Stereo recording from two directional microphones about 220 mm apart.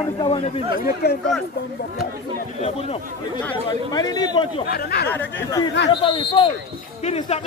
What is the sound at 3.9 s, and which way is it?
Speech, 15° left (ahead or behind).